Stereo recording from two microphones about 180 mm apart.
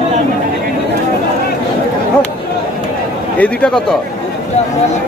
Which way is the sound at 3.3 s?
5° left (ahead or behind).